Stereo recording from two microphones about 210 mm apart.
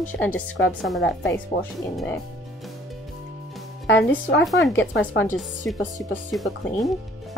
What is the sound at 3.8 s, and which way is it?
Speech, 60° left (ahead or behind).